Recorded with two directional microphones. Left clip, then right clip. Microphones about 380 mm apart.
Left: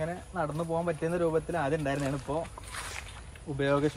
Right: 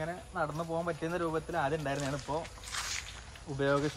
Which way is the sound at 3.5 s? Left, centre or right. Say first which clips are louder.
Left 3 dB; centre.